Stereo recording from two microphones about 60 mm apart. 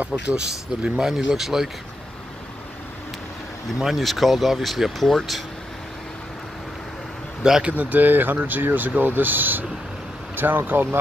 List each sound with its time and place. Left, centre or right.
0.1 s speech: right
0.8 s speech: centre
3.8 s speech: centre
7.6 s speech: right